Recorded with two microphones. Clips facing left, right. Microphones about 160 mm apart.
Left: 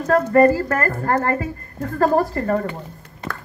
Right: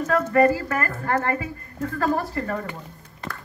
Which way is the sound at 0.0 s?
40° left (ahead or behind).